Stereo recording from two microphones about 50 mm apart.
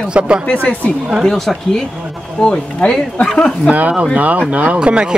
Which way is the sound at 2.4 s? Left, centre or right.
Centre.